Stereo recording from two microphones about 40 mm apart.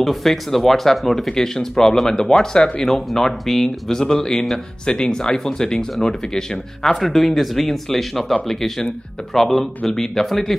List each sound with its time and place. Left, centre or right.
0.0 s speech: centre
3.1 s speech: centre